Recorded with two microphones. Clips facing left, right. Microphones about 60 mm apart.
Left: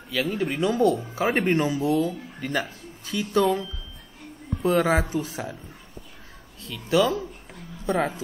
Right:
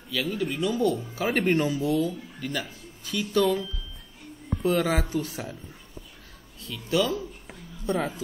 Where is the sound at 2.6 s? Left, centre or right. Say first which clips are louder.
Left 3 dB; left.